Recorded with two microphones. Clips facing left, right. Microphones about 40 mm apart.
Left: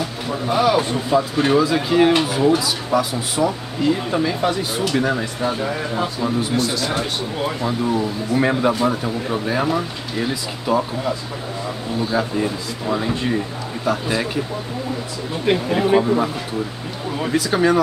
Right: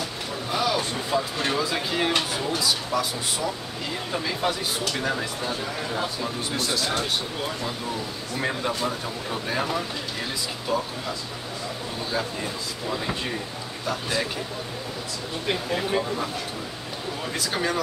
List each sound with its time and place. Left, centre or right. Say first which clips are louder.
0.5 s a sound: left 8 dB; left
1.1 s speech: left 9 dB; centre
6.4 s speech: left 6 dB; centre
8.4 s speech: left 9 dB; left
12.0 s speech: left 9 dB; centre
15.4 s speech: left 9 dB; left
17.3 s speech: left 10 dB; centre